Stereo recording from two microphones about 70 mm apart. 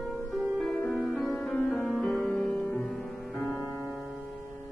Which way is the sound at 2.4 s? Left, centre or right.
Centre.